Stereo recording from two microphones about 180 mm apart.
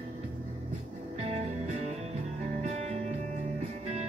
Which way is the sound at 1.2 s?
40° right (ahead or behind).